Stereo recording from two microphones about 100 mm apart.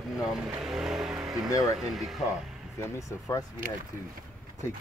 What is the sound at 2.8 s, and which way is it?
Speech, 35° left (ahead or behind).